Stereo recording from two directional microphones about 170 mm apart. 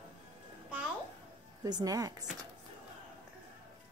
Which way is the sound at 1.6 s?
20° right (ahead or behind).